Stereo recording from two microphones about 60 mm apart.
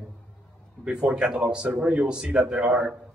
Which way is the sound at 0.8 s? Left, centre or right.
Centre.